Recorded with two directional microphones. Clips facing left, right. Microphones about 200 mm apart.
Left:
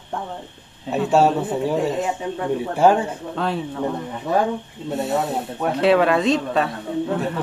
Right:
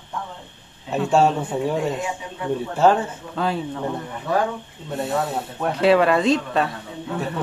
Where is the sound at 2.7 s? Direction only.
10° left (ahead or behind).